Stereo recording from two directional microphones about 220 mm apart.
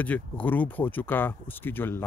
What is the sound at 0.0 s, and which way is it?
Speech, 5° left (ahead or behind).